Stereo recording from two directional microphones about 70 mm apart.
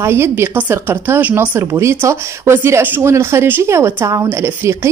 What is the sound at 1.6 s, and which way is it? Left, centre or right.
A woman's voice, right.